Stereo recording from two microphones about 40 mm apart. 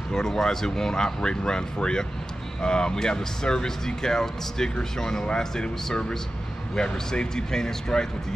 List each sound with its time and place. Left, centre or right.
0.1 s speech: centre